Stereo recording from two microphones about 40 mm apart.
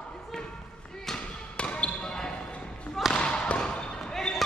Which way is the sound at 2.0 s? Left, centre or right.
Centre.